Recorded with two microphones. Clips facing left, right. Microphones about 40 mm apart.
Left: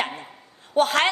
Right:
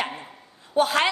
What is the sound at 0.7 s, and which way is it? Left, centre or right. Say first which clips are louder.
Speech: left 1 dB; left.